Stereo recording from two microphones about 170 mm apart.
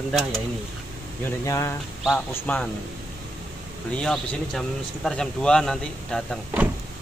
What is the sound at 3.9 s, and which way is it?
Speech, 5° left (ahead or behind).